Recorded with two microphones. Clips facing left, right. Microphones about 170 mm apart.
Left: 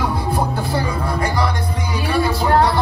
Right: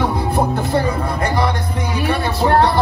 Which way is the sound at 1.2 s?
25° right (ahead or behind).